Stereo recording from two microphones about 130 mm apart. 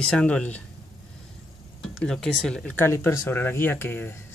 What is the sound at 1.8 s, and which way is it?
Speech, 5° left (ahead or behind).